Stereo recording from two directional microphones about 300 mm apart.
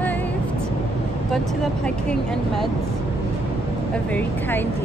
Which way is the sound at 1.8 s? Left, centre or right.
Centre.